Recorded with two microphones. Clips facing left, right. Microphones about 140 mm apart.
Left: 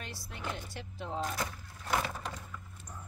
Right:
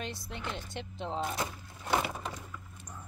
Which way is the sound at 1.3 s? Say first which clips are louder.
Right 2 dB; 25° right (ahead or behind).